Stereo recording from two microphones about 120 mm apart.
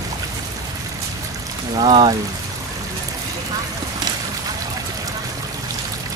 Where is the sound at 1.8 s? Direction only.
50° right (ahead or behind).